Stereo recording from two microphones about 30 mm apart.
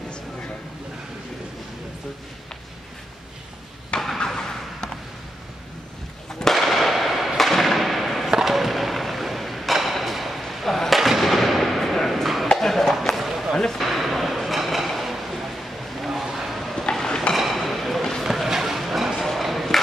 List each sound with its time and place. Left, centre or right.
3.9 s vehicle: left
4.4 s vehicle: centre
6.5 s fireworks: centre
7.3 s thump: centre
8.3 s a sound: centre
13.1 s a sound: centre
16.1 s vehicle: centre
17.6 s a sound: centre
19.1 s chop: centre